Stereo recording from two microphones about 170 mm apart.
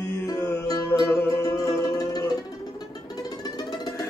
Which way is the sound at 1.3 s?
20° left (ahead or behind).